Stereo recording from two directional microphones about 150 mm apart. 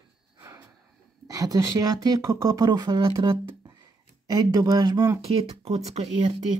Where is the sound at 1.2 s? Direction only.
25° right (ahead or behind).